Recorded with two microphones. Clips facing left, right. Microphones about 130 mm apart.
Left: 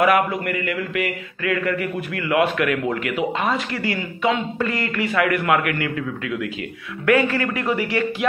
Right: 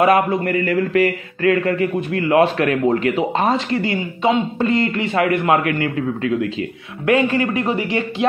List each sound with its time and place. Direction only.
0.0 s a man's voice: 25° right (ahead or behind)
7.1 s a man's voice: 20° right (ahead or behind)